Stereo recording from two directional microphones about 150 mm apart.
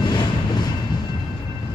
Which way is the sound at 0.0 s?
30° left (ahead or behind).